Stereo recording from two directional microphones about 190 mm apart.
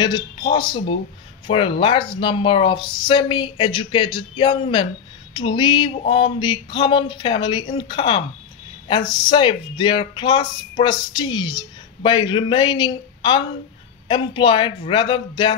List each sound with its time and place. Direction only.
0.0 s speech: 25° left (ahead or behind)